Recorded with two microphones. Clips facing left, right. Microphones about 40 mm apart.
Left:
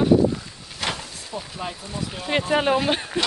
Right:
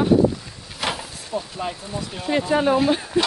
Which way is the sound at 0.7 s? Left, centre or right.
Centre.